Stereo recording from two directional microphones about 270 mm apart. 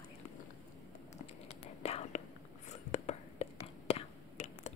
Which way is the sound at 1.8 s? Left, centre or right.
Left.